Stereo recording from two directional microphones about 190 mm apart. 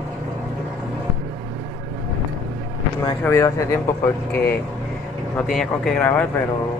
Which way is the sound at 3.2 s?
15° left (ahead or behind).